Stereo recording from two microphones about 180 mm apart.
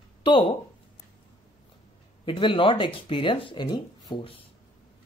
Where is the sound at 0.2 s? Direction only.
30° left (ahead or behind).